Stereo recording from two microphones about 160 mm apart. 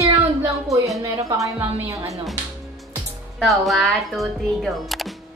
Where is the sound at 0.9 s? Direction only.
20° right (ahead or behind).